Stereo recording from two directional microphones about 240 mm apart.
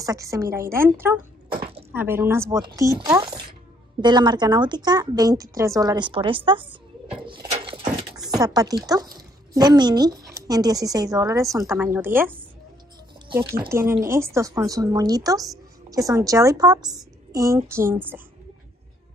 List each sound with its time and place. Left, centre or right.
0.0 s speech: centre
7.2 s a sound: right
8.4 s speech: centre
13.7 s speech: centre